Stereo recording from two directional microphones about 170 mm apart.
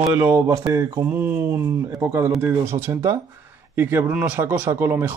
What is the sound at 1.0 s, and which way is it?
Speech, 10° right (ahead or behind).